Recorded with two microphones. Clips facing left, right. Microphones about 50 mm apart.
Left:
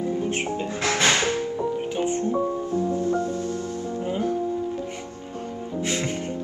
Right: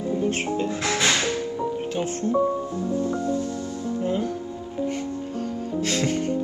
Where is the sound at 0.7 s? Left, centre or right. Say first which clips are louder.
Left 4 dB; left.